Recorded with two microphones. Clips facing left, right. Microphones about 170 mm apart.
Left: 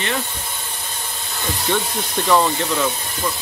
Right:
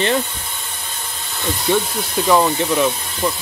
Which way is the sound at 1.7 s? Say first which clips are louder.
Right 4 dB; 10° right (ahead or behind).